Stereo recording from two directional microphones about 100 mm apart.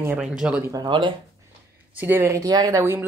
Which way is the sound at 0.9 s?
55° right (ahead or behind).